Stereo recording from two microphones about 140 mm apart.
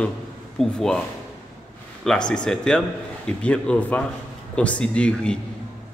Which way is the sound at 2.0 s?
5° left (ahead or behind).